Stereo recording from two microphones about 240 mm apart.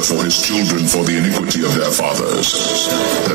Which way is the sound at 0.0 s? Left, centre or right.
Right.